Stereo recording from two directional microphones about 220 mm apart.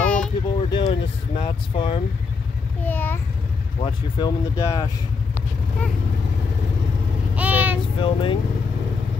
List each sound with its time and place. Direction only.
0.0 s a sound: 5° left (ahead or behind)
0.6 s vehicle: 25° left (ahead or behind)
2.8 s a sound: 10° left (ahead or behind)
3.8 s speech: 15° left (ahead or behind)
7.3 s child singing: 5° right (ahead or behind)
8.0 s speech: 25° left (ahead or behind)